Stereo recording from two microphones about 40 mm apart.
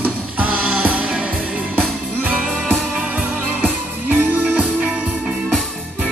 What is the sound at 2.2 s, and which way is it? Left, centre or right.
Music, right.